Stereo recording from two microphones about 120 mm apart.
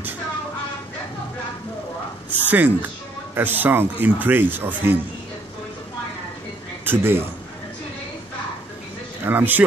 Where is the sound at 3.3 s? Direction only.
15° right (ahead or behind).